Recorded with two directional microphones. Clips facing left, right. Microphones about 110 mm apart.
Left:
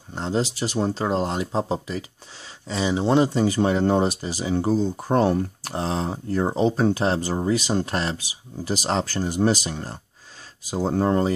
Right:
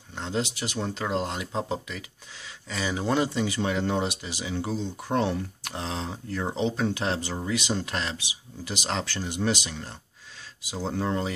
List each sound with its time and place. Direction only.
0.1 s speech: 35° left (ahead or behind)
3.3 s speech: 40° left (ahead or behind)